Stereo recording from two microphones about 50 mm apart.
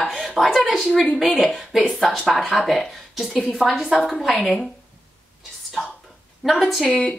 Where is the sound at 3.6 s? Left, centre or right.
Centre.